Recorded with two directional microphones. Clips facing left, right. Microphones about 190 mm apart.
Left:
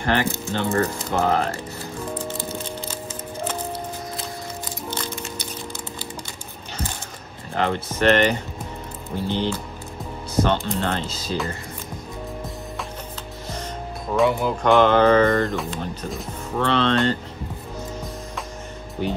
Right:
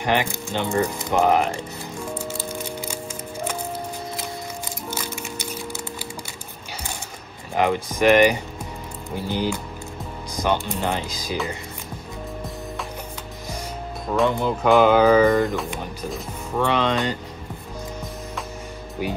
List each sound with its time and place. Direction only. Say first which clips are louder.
0.0 s speech: even; 15° right (ahead or behind)
2.1 s music: left 1 dB; 10° right (ahead or behind)
4.9 s music: even; 10° right (ahead or behind)
7.5 s speech: right 2 dB; 10° right (ahead or behind)
14.1 s speech: left 1 dB; 5° left (ahead or behind)
15.7 s speech: even; 10° right (ahead or behind)
19.0 s speech: left 1 dB; 10° right (ahead or behind)